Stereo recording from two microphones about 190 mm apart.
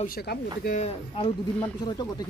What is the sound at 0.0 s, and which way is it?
Speech, 55° left (ahead or behind).